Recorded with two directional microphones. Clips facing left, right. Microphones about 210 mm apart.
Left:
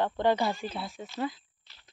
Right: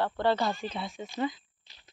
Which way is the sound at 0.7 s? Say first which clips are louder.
Right 1 dB; centre (ahead or behind).